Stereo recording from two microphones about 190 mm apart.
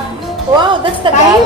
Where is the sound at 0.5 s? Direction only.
25° right (ahead or behind).